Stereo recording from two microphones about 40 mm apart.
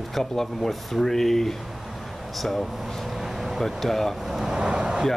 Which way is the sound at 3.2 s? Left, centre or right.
Centre.